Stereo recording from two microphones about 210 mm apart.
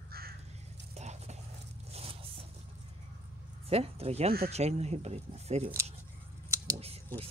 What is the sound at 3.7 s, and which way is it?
Speech, 30° right (ahead or behind).